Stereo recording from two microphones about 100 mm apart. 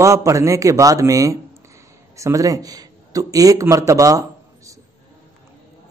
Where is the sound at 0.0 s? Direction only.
30° right (ahead or behind).